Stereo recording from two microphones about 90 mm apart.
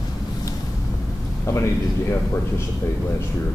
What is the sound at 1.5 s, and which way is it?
Speech, 35° left (ahead or behind).